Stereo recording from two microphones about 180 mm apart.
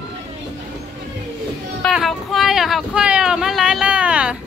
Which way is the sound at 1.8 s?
Centre (ahead or behind).